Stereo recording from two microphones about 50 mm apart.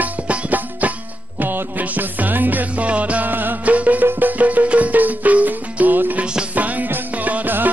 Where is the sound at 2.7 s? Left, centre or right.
Right.